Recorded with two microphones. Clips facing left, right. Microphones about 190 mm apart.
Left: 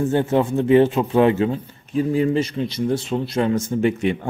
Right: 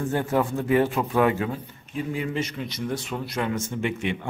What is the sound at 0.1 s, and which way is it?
Speech, 25° left (ahead or behind).